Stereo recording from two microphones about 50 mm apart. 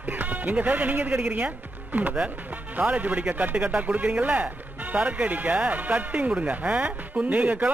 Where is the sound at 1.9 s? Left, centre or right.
Right.